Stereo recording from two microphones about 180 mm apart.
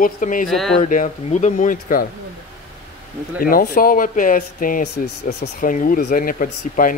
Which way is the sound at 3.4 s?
50° left (ahead or behind).